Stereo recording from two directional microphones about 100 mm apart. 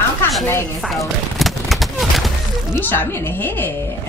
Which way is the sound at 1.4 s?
Centre (ahead or behind).